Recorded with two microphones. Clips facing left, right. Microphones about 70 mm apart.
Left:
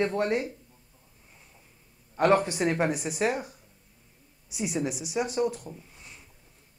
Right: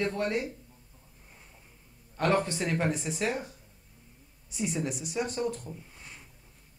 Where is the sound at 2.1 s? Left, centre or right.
Centre.